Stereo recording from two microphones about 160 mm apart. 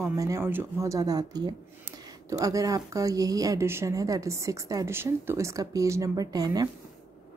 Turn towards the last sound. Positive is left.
turn(degrees=-25)  # may be behind; listen again after turning